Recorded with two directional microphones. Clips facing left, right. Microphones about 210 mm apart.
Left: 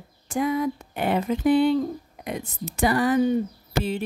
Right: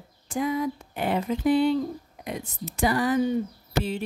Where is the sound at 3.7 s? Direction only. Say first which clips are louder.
Left 1 dB; 55° left (ahead or behind).